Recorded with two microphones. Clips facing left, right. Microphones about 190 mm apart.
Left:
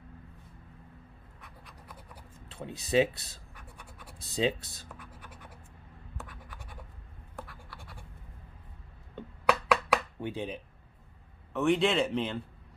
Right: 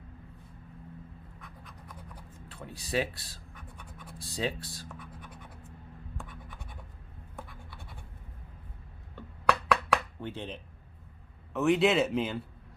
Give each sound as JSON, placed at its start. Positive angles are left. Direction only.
{"t": 2.4, "sound": "speech", "side_deg": 25}
{"t": 3.5, "sound": "scratch", "side_deg": 10}
{"t": 4.2, "sound": "speech", "side_deg": 20}
{"t": 6.1, "sound": "scratch", "side_deg": 0}
{"t": 9.7, "sound": "chopping", "side_deg": 10}
{"t": 11.5, "sound": "a man's voice", "side_deg": 0}